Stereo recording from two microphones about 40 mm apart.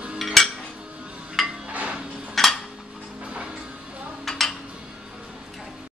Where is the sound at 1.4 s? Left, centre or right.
Centre.